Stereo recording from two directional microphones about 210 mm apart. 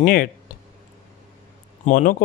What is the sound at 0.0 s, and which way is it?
Speech, 40° left (ahead or behind).